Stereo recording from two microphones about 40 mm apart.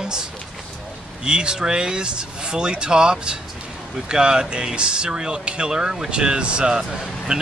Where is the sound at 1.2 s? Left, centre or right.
Right.